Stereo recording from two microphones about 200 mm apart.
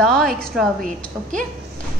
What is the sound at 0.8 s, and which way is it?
Speech, 40° right (ahead or behind).